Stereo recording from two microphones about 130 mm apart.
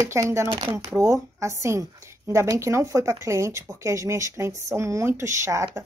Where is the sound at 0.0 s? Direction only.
20° right (ahead or behind).